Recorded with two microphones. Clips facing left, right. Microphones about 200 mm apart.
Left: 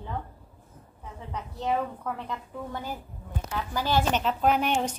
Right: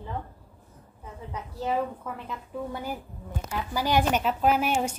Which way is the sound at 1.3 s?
5° right (ahead or behind).